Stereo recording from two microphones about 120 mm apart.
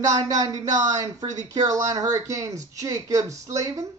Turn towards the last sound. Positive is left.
turn(degrees=-30)  # may be behind; listen again after turning